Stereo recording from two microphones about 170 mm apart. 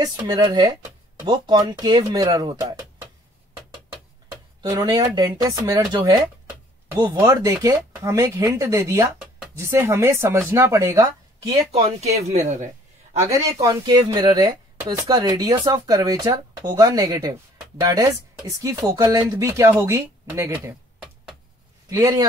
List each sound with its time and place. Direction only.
0.0 s speech: 25° right (ahead or behind)
4.6 s speech: 20° right (ahead or behind)
11.7 s speech: 40° right (ahead or behind)
13.2 s a man's voice: 20° right (ahead or behind)